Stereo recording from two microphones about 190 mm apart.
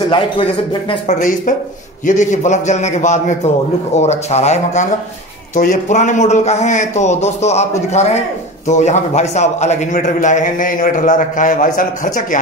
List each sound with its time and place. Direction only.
0.1 s speech: 25° left (ahead or behind)
2.0 s a man's voice: 40° left (ahead or behind)